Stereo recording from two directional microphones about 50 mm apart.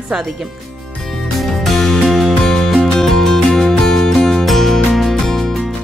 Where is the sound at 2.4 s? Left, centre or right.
Centre.